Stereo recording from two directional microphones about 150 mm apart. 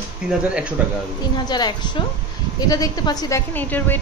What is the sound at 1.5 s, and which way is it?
A woman's voice, 30° left (ahead or behind).